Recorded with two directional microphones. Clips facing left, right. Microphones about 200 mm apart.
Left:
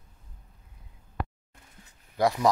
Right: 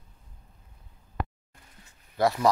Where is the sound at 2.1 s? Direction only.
15° left (ahead or behind).